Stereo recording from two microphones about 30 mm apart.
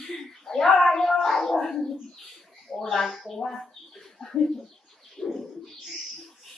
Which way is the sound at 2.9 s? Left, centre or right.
Centre.